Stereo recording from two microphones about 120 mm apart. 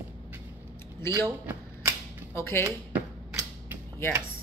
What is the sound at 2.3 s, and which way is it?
Speech, 20° left (ahead or behind).